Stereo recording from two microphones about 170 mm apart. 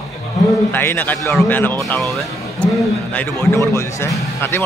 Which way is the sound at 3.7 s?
15° left (ahead or behind).